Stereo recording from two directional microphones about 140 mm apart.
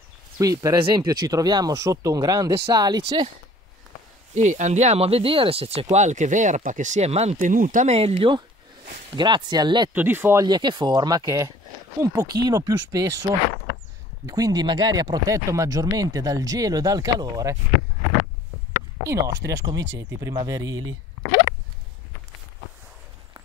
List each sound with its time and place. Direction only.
0.4 s speech: 25° right (ahead or behind)
4.3 s speech: 60° right (ahead or behind)
7.9 s speech: 45° right (ahead or behind)
9.9 s speech: 15° right (ahead or behind)
10.4 s speech: 30° right (ahead or behind)
14.2 s speech: 25° right (ahead or behind)
19.0 s speech: 20° right (ahead or behind)